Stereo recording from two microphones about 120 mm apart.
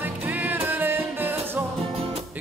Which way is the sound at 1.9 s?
55° right (ahead or behind).